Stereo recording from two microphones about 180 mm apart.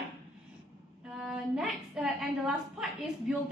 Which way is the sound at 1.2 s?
Centre (ahead or behind).